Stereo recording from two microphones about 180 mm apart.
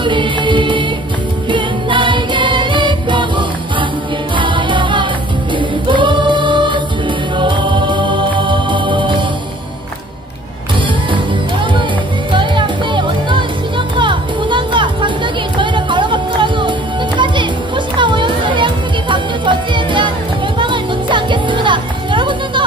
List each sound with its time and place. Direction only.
0.0 s music: 25° right (ahead or behind)
5.9 s choir: 25° right (ahead or behind)
7.3 s music: 25° right (ahead or behind)
12.3 s music: 25° right (ahead or behind)